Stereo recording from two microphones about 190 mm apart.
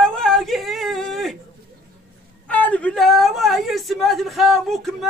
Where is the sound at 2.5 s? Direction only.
5° left (ahead or behind).